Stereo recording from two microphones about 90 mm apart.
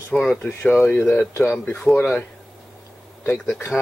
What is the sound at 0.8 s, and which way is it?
Speech, 20° left (ahead or behind).